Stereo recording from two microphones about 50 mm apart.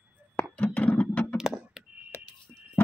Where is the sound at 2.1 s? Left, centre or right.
Left.